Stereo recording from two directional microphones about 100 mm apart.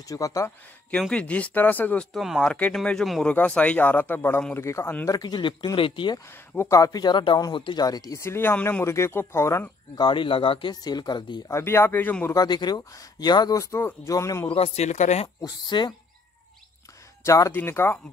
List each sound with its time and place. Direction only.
0.1 s speech: 35° left (ahead or behind)
1.1 s speech: 10° left (ahead or behind)
2.1 s speech: 5° right (ahead or behind)
2.4 s speech: 10° left (ahead or behind); by 4.9 s 25° left (ahead or behind)
5.0 s speech: 40° left (ahead or behind); by 6.1 s 55° left (ahead or behind)
6.7 s speech: 35° left (ahead or behind)
8.2 s speech: 25° left (ahead or behind)
9.9 s speech: 50° left (ahead or behind)
10.7 s speech: 45° left (ahead or behind)
11.4 s speech: 25° left (ahead or behind)
12.4 s speech: 45° left (ahead or behind)
14.5 s speech: 85° left
15.4 s speech: 45° left (ahead or behind)
17.2 s speech: 30° left (ahead or behind)